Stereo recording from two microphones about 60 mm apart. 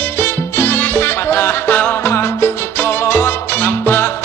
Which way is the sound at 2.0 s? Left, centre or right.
Left.